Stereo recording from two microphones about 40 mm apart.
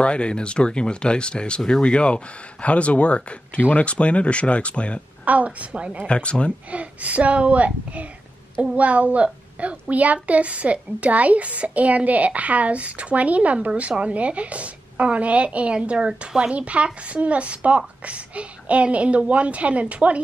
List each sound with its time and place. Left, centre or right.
0.0 s speech: left
5.2 s a child's voice: right
5.7 s speech: right
6.0 s speech: left
6.7 s a child's voice: right